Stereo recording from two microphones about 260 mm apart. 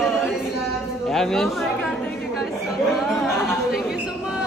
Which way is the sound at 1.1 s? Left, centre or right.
Centre.